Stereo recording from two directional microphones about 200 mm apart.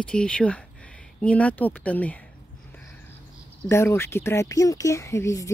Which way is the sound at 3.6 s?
10° left (ahead or behind).